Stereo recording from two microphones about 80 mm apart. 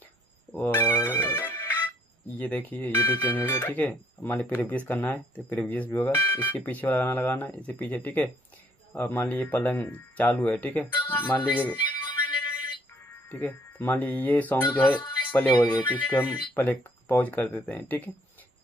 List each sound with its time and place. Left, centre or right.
0.6 s speech: left
13.1 s speech: left